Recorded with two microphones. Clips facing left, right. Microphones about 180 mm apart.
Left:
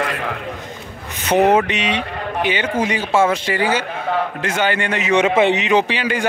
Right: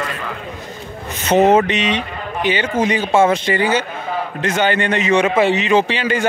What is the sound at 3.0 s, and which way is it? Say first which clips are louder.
Speech: right 2 dB; 25° right (ahead or behind).